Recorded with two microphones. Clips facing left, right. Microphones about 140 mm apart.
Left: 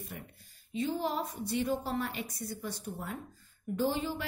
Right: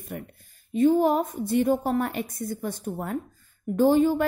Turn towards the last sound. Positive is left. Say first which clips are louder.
# right 12 dB
turn(degrees=-50)  # may be behind; listen again after turning